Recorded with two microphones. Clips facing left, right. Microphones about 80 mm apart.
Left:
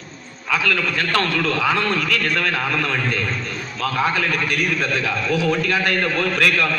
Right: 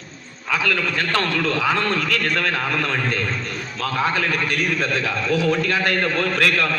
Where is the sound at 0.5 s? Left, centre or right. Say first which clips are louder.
Left 1 dB; right.